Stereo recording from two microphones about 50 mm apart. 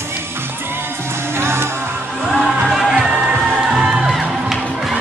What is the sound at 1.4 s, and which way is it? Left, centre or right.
Music, right.